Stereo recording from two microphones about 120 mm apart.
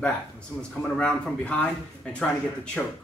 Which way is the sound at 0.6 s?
10° left (ahead or behind).